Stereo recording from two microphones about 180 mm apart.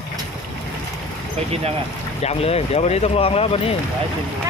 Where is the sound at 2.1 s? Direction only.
35° left (ahead or behind).